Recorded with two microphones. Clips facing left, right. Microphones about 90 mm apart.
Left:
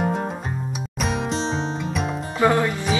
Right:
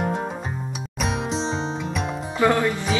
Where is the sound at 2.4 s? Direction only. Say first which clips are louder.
Left 1 dB; 20° left (ahead or behind).